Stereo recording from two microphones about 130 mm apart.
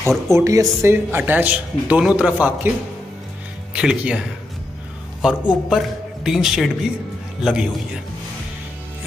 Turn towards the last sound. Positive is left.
turn(degrees=-5)  # may be behind; listen again after turning